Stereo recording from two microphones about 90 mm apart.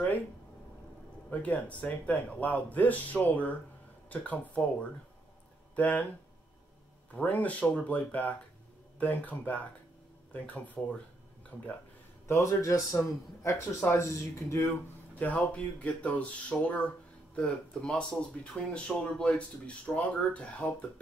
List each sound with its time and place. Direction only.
1.3 s speech: 15° left (ahead or behind)
5.8 s speech: 15° left (ahead or behind)
7.2 s speech: 15° left (ahead or behind)
12.3 s a man's voice: 35° left (ahead or behind)
15.1 s speech: 15° left (ahead or behind)